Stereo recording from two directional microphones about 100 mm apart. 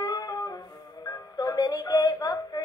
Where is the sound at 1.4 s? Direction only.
35° left (ahead or behind).